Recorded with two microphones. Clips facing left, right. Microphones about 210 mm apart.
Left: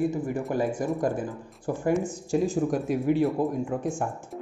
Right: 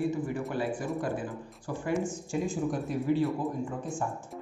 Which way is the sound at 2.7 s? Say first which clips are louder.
Left 4 dB; 75° left (ahead or behind).